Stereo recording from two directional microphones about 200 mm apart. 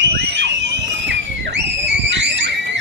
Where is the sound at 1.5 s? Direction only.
60° right (ahead or behind).